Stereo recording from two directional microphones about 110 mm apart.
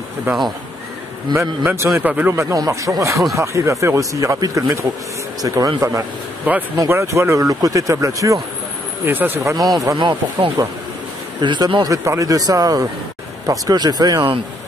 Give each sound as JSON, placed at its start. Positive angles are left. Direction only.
{"t": 1.3, "sound": "speech", "side_deg": -20}
{"t": 2.5, "sound": "a man's voice", "side_deg": -30}
{"t": 6.5, "sound": "speech", "side_deg": -15}
{"t": 9.0, "sound": "speech", "side_deg": -20}
{"t": 9.9, "sound": "a man's voice", "side_deg": -45}